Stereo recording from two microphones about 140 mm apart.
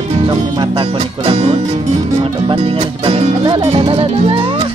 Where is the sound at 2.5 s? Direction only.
40° right (ahead or behind).